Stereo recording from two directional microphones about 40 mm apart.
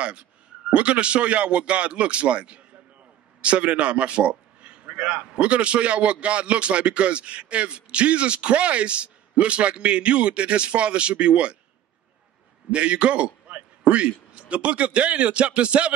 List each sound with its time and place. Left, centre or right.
0.0 s a man's voice: right
12.7 s a man's voice: right